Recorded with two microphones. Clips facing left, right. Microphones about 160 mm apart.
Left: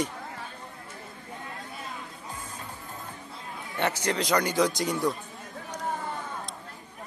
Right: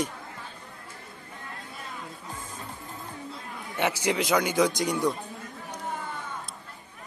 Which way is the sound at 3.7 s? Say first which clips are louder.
Right 1 dB; 10° right (ahead or behind).